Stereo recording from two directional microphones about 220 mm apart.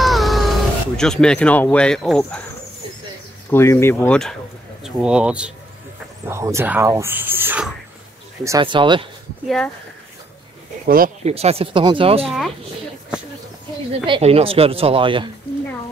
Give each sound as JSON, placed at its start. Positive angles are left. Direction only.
{"t": 0.0, "sound": "a sound", "side_deg": 0}
{"t": 3.4, "sound": "speech", "side_deg": 10}
{"t": 8.5, "sound": "speech", "side_deg": -20}
{"t": 10.9, "sound": "speech", "side_deg": -40}
{"t": 11.3, "sound": "speech", "side_deg": -25}
{"t": 12.3, "sound": "speech", "side_deg": 0}
{"t": 14.0, "sound": "speech", "side_deg": -25}